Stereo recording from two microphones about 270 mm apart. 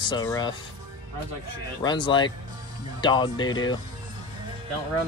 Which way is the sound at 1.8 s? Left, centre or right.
Centre.